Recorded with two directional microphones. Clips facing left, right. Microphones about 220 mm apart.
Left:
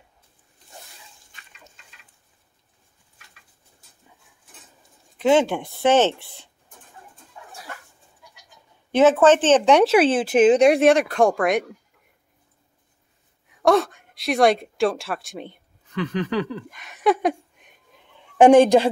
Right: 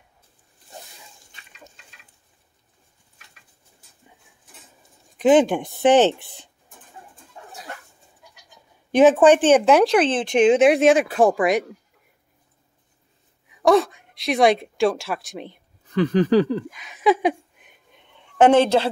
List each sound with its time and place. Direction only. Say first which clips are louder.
5.2 s speech: right 3 dB; 15° right (ahead or behind)
8.9 s speech: right 2 dB; 15° right (ahead or behind)
9.9 s speech: left 2 dB; 10° left (ahead or behind)
13.6 s a woman's voice: right 1 dB; centre (ahead or behind)
15.9 s a sound: right 7 dB; 35° right (ahead or behind)
16.7 s a sound: even; centre (ahead or behind)
18.4 s a woman's voice: left 3 dB; 15° left (ahead or behind)